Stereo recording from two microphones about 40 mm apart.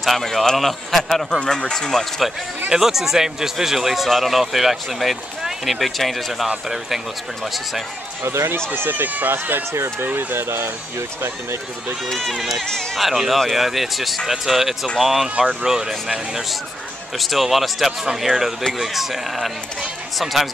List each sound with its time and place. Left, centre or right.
0.0 s speech: centre
2.7 s speech: centre
8.2 s speech: right
8.7 s speech: right
12.2 s speech: centre
17.2 s speech: centre